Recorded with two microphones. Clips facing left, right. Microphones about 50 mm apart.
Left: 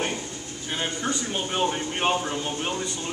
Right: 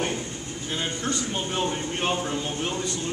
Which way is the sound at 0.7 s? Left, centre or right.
Centre.